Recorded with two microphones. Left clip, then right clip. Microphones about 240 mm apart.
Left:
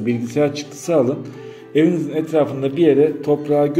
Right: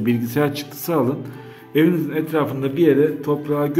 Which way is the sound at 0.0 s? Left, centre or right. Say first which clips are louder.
Left 2 dB; centre.